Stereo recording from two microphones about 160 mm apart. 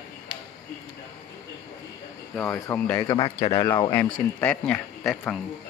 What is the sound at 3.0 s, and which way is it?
Speech, 30° left (ahead or behind).